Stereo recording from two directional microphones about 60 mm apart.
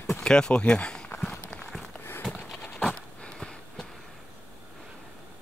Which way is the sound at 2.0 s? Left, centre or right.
Left.